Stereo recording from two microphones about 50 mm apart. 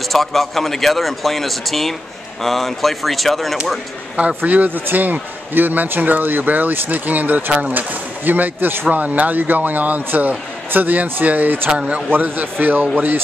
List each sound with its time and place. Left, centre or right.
0.1 s speech: centre
4.5 s a man's voice: right